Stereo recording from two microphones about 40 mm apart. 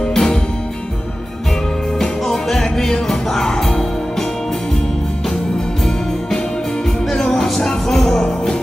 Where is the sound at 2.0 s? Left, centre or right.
Centre.